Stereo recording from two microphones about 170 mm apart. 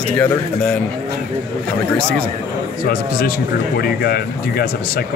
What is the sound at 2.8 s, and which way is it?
Speech, 60° left (ahead or behind).